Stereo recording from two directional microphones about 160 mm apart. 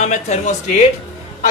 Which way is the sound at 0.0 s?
50° left (ahead or behind).